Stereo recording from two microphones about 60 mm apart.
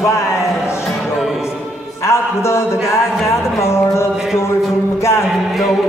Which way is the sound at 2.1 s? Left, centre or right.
Left.